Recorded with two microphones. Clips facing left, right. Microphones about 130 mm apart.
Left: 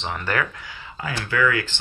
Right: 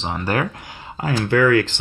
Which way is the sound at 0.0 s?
35° right (ahead or behind).